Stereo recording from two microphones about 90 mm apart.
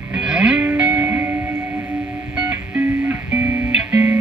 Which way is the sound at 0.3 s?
15° right (ahead or behind).